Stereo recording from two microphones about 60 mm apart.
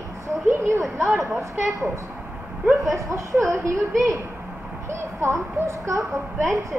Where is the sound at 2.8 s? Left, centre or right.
Right.